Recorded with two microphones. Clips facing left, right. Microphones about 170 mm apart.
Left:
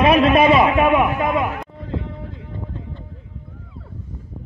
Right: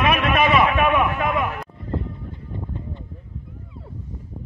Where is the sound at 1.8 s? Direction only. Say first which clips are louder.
Left 1 dB; 85° left.